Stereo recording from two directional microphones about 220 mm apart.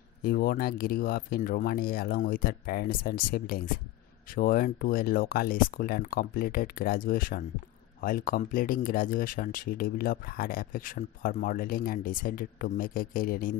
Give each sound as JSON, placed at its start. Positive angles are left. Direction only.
{"t": 0.2, "sound": "speech", "side_deg": 40}